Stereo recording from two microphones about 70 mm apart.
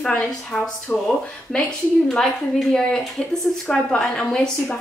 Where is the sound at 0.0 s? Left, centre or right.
Centre.